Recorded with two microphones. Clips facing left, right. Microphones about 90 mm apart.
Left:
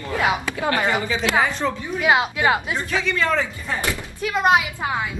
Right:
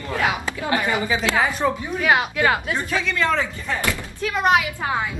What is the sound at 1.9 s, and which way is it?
Speech, 20° left (ahead or behind).